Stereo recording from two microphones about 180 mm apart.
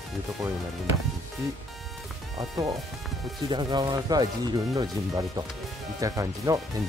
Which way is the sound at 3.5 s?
25° right (ahead or behind).